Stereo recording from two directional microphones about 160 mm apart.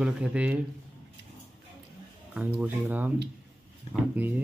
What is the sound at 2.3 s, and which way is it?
Speech, 10° right (ahead or behind).